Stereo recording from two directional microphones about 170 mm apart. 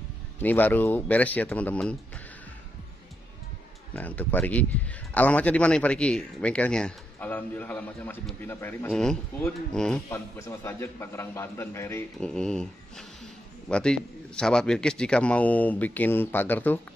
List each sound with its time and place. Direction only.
0.4 s a man's voice: 10° left (ahead or behind)
3.9 s a man's voice: 10° left (ahead or behind)
8.9 s speech: 5° left (ahead or behind)
10.0 s a man's voice: 15° left (ahead or behind)
12.3 s a man's voice: 5° left (ahead or behind)